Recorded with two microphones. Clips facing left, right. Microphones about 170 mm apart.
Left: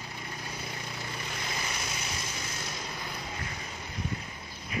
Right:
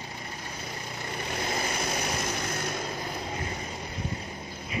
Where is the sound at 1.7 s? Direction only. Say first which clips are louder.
Right 7 dB; 55° right (ahead or behind).